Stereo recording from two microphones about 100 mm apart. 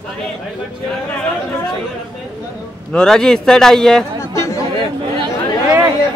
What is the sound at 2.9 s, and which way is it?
A man's voice, 5° left (ahead or behind).